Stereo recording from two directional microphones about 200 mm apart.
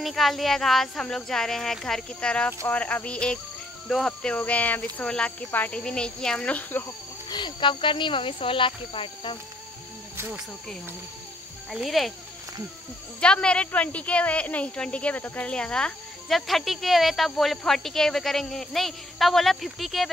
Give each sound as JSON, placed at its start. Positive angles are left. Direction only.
{"t": 0.0, "sound": "speech", "side_deg": 0}
{"t": 7.2, "sound": "speech", "side_deg": 20}
{"t": 11.7, "sound": "speech", "side_deg": 0}
{"t": 13.2, "sound": "speech", "side_deg": 5}